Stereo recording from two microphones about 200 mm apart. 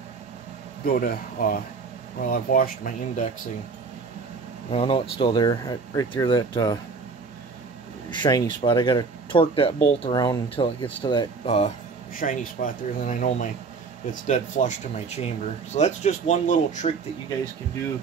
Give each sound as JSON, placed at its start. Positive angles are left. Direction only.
{"t": 0.8, "sound": "speech", "side_deg": 45}
{"t": 4.6, "sound": "speech", "side_deg": 30}
{"t": 8.1, "sound": "speech", "side_deg": 20}